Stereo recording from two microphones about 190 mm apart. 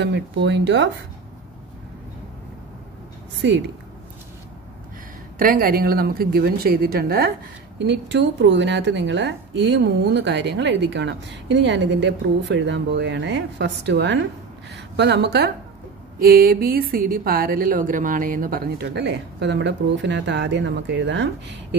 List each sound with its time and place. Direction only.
0.0 s speech: 65° right (ahead or behind)
3.4 s a woman's voice: 70° right (ahead or behind)
5.4 s a woman's voice: 50° right (ahead or behind)
7.8 s a woman's voice: 65° right (ahead or behind)